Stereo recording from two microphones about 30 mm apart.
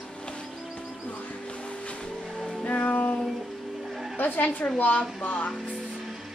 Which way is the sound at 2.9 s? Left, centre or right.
Left.